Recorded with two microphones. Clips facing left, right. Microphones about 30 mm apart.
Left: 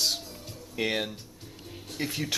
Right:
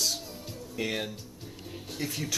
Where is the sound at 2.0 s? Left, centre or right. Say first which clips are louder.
Left 2 dB; left.